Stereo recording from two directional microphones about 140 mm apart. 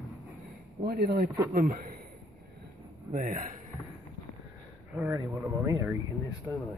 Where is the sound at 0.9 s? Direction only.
90° right.